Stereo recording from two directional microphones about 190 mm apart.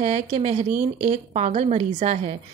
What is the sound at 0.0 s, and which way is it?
Speech, 35° right (ahead or behind).